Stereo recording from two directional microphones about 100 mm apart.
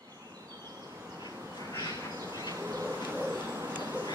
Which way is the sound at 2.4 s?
35° right (ahead or behind).